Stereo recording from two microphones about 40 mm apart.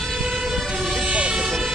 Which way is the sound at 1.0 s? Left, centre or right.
Right.